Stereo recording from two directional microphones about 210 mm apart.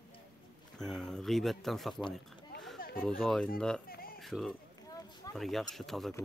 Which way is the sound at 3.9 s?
45° left (ahead or behind).